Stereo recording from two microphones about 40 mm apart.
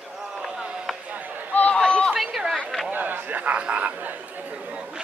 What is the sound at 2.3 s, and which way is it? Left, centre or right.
Chatter, centre.